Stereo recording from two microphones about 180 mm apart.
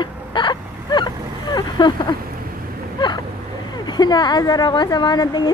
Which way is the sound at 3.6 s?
25° left (ahead or behind).